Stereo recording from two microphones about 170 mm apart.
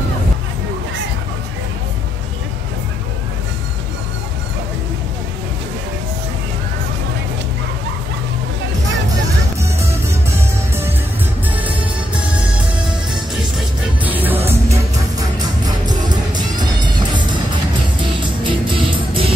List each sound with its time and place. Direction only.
9.6 s music: 15° right (ahead or behind)
11.5 s music: 10° right (ahead or behind)
13.4 s music: 5° right (ahead or behind)
15.1 s music: 25° right (ahead or behind)